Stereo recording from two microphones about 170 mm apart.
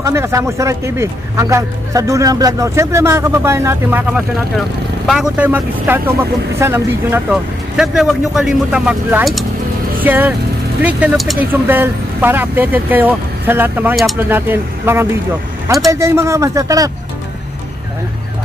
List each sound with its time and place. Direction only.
0.0 s speech: 15° right (ahead or behind)
7.7 s speech: 5° right (ahead or behind)
10.0 s speech: 10° right (ahead or behind)